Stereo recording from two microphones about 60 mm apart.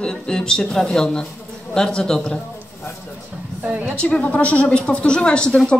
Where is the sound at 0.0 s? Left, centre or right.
Centre.